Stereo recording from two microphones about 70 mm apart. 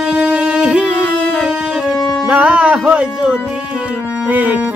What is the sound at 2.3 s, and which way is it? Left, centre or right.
Speech, centre.